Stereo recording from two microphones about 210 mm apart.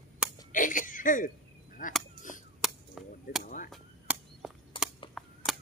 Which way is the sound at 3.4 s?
40° left (ahead or behind).